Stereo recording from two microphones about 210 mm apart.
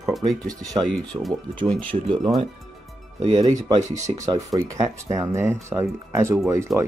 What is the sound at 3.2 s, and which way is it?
Speech, 25° right (ahead or behind).